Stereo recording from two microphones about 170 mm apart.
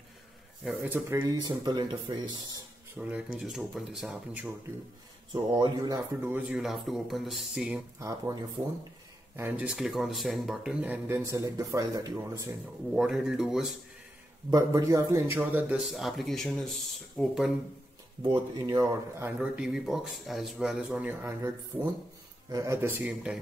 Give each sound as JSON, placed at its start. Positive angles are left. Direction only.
{"t": 0.7, "sound": "speech", "side_deg": -10}
{"t": 1.3, "sound": "speech", "side_deg": -25}
{"t": 3.0, "sound": "speech", "side_deg": -10}
{"t": 5.3, "sound": "speech", "side_deg": -25}
{"t": 6.2, "sound": "speech", "side_deg": -10}
{"t": 9.4, "sound": "speech", "side_deg": -5}
{"t": 12.9, "sound": "speech", "side_deg": -5}
{"t": 14.5, "sound": "speech", "side_deg": -20}
{"t": 18.2, "sound": "speech", "side_deg": -25}